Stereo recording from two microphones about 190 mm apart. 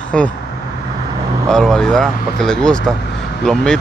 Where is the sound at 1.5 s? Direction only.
5° left (ahead or behind).